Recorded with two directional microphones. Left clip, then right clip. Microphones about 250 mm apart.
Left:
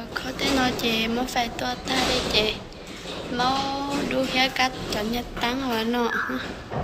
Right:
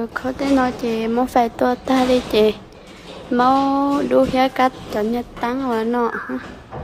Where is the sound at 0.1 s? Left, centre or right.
Right.